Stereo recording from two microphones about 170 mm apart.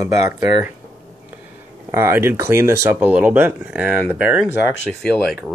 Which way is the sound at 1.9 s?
15° right (ahead or behind).